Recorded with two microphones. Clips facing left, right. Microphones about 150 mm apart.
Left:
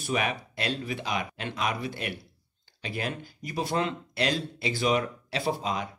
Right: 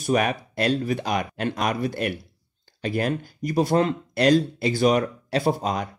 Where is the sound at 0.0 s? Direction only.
45° right (ahead or behind).